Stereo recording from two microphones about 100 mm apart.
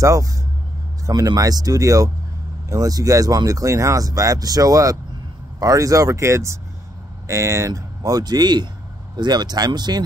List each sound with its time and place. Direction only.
0.0 s speech: 35° right (ahead or behind)